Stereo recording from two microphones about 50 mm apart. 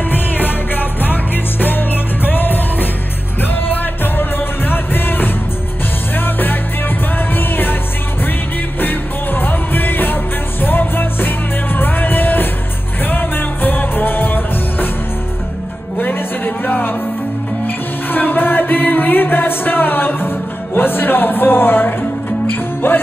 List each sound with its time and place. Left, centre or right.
0.1 s music: left
8.8 s music: left
16.0 s music: left